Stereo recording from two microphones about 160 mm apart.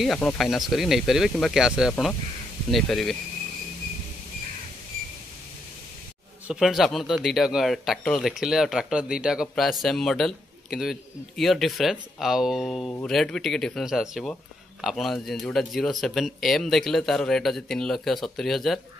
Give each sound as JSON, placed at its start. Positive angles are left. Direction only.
{"t": 0.0, "sound": "a man's voice", "side_deg": 5}
{"t": 6.4, "sound": "a man's voice", "side_deg": -5}